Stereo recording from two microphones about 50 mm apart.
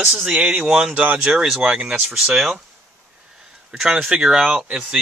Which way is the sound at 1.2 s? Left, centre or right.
Centre.